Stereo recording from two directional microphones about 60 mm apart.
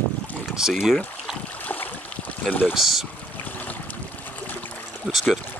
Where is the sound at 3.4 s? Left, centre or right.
Left.